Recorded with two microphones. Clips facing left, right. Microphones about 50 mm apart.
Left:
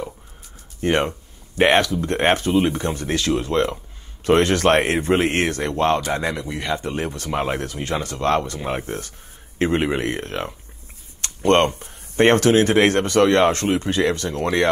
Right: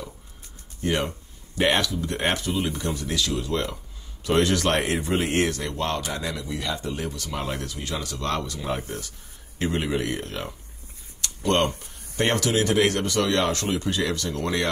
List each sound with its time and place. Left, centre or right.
0.7 s speech: left
11.1 s a sound: left
11.8 s speech: left